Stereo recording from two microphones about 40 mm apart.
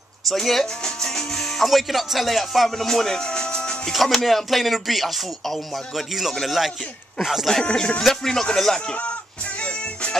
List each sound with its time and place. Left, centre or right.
0.3 s speech: centre
1.7 s music: centre
3.9 s music: centre
7.6 s music: centre
8.0 s speech: centre